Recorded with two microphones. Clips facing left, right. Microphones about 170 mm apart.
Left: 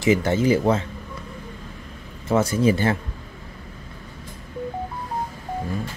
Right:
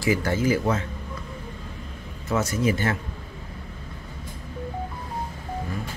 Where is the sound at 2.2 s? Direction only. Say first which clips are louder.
Left 5 dB; 30° left (ahead or behind).